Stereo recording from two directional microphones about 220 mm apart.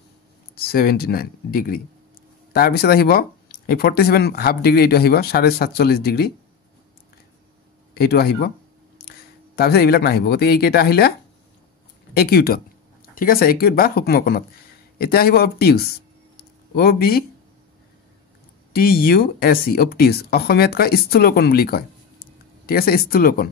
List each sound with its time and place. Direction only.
0.6 s speech: 45° left (ahead or behind)
7.9 s speech: 45° left (ahead or behind)
9.6 s speech: 45° left (ahead or behind)
12.2 s speech: 45° left (ahead or behind)
16.3 s a sound: 45° left (ahead or behind)
18.7 s speech: 45° left (ahead or behind)